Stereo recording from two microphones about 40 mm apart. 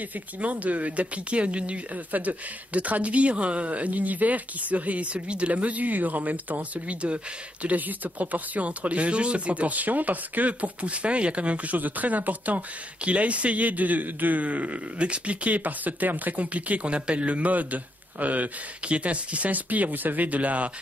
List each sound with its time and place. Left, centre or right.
0.1 s speech: right
7.6 s speech: right